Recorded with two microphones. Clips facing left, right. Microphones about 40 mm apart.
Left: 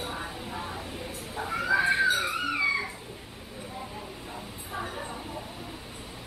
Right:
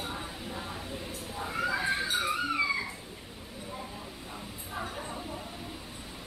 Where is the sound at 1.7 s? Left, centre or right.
Left.